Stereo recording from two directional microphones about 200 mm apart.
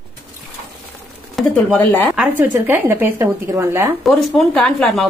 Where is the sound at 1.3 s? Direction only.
5° left (ahead or behind).